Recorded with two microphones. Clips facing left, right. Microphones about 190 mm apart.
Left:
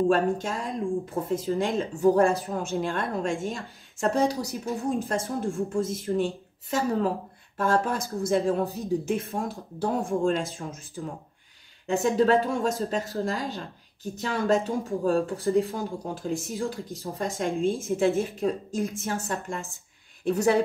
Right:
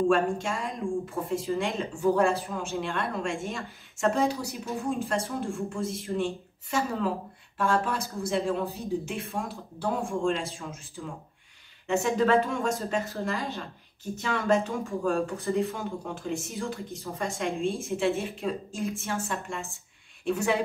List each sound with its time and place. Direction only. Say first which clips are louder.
0.1 s speech: left 1 dB; 40° left (ahead or behind)
7.5 s speech: left 2 dB; 40° left (ahead or behind)